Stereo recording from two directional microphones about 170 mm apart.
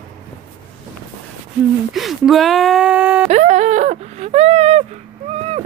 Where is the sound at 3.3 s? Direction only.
45° right (ahead or behind).